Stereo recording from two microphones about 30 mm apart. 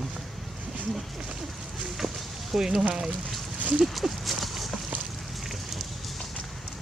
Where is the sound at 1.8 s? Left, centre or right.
Centre.